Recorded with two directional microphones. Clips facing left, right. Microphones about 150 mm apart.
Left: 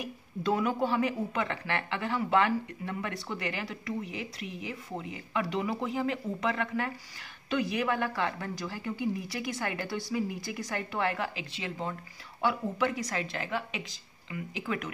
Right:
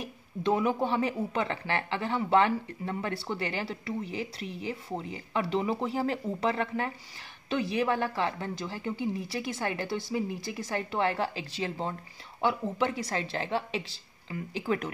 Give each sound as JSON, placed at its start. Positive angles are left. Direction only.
{"t": 0.0, "sound": "a woman's voice", "side_deg": -25}